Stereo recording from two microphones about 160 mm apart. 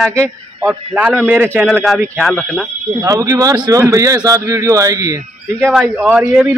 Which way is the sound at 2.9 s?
20° right (ahead or behind).